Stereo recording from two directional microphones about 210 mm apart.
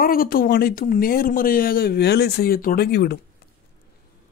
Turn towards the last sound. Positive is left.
turn(degrees=50)  # may be behind; listen again after turning